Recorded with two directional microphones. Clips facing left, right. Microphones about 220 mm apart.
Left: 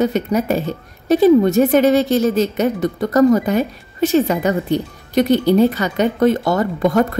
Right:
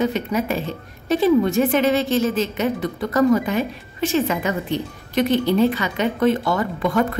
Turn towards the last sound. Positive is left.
turn(degrees=40)  # may be behind; listen again after turning